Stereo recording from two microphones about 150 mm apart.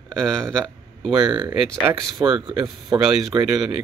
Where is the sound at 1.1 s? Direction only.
35° right (ahead or behind).